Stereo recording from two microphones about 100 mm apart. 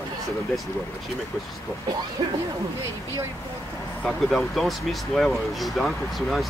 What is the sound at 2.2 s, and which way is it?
Speech, 60° right (ahead or behind).